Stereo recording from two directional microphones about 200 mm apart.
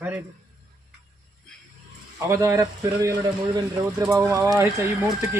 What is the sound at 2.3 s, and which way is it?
Speech, 15° right (ahead or behind).